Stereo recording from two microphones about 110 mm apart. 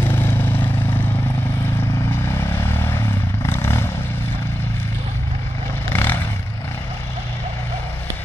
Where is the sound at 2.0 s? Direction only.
25° left (ahead or behind).